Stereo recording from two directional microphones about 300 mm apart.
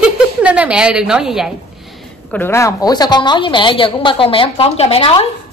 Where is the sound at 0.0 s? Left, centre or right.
Centre.